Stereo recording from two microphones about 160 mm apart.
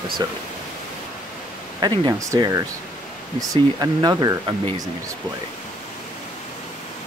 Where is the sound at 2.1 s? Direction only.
20° right (ahead or behind).